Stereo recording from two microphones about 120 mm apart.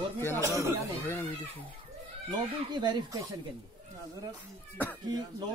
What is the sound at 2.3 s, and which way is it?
Speech, 40° right (ahead or behind).